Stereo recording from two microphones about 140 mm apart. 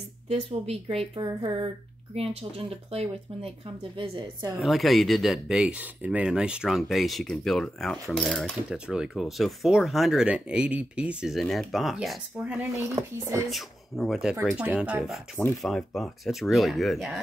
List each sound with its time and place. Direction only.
0.3 s a woman's voice: 45° right (ahead or behind)
4.6 s speech: centre (ahead or behind)
12.5 s speech: 15° right (ahead or behind)
13.5 s speech: centre (ahead or behind)